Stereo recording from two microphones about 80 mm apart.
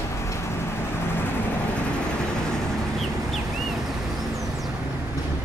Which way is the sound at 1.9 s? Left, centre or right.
Centre.